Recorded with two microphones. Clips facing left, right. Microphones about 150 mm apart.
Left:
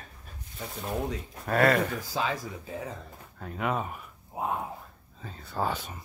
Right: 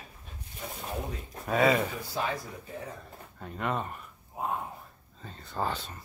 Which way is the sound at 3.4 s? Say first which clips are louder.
Left 2 dB; centre (ahead or behind).